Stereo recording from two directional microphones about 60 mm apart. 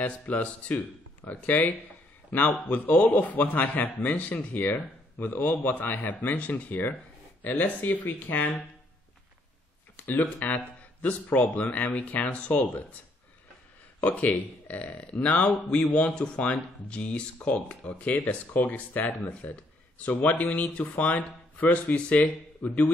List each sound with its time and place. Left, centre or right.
0.0 s speech: left
9.9 s speech: left
14.0 s speech: left